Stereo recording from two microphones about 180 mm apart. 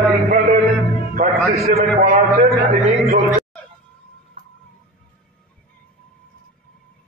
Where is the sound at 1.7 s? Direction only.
45° right (ahead or behind).